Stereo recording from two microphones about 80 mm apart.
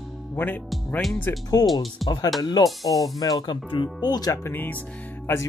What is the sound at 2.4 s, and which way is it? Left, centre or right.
Speech, left.